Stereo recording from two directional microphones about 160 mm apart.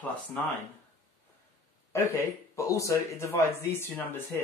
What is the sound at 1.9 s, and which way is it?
Speech, 20° left (ahead or behind).